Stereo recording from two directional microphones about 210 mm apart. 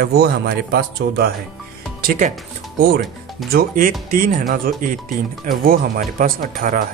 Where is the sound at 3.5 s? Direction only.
40° right (ahead or behind).